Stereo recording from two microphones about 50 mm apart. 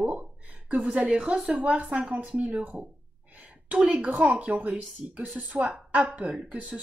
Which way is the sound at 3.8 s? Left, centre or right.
Right.